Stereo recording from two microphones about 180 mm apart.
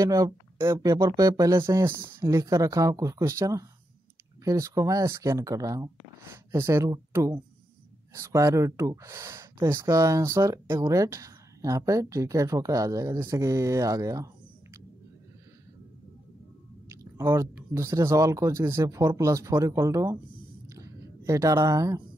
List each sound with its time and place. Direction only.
0.0 s speech: 20° right (ahead or behind)
16.9 s speech: 15° right (ahead or behind)
20.6 s a sound: 15° right (ahead or behind)